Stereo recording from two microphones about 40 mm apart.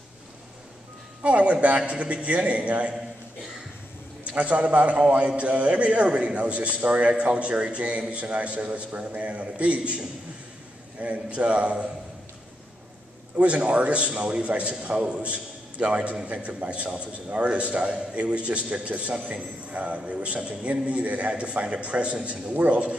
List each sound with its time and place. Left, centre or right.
1.2 s a man's voice: right
4.4 s a man's voice: right
13.4 s a man's voice: right
19.7 s a man's voice: right